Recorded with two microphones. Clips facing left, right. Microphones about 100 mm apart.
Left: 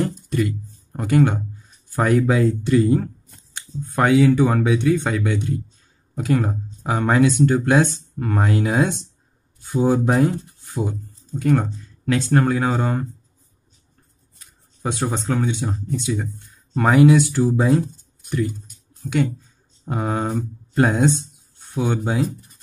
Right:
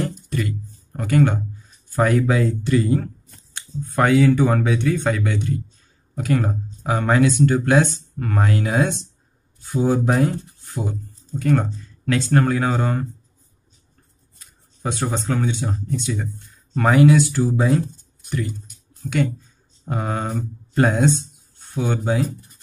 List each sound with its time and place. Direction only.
0.9 s speech: 15° left (ahead or behind)
14.8 s speech: 10° left (ahead or behind)
19.0 s speech: 15° left (ahead or behind)